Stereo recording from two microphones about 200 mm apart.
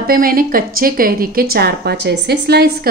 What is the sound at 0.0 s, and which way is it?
A woman's voice, 45° right (ahead or behind).